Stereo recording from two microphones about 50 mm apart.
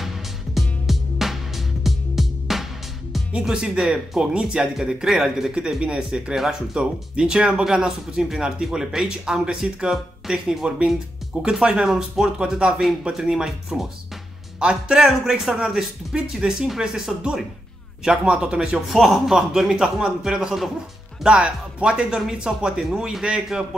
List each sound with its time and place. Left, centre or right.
0.0 s music: centre
3.3 s speech: centre
4.7 s speech: centre
5.6 s speech: centre
11.9 s speech: centre
12.4 s speech: centre
18.9 s speech: centre